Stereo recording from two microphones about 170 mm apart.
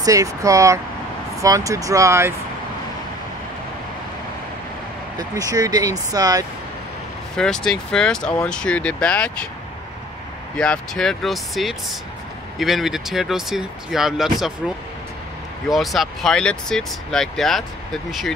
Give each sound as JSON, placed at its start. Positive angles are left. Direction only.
{"t": 0.0, "sound": "speech", "side_deg": -20}
{"t": 5.1, "sound": "speech", "side_deg": -20}
{"t": 7.3, "sound": "speech", "side_deg": 5}
{"t": 10.6, "sound": "speech", "side_deg": 5}
{"t": 15.7, "sound": "speech", "side_deg": 0}